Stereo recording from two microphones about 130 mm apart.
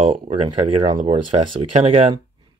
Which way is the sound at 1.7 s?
55° right (ahead or behind).